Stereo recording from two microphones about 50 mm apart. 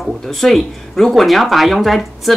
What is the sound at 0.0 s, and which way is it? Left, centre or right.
Speech, centre.